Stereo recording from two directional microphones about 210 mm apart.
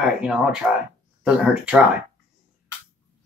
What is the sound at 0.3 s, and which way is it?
Speech, 5° right (ahead or behind).